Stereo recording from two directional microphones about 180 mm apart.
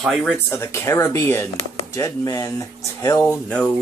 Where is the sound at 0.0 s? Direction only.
Centre (ahead or behind).